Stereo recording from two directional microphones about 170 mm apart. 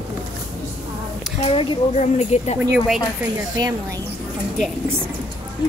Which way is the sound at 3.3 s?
20° right (ahead or behind).